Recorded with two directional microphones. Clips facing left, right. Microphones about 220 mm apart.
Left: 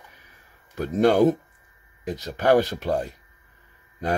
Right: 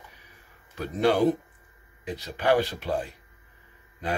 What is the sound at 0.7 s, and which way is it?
Speech, 45° left (ahead or behind).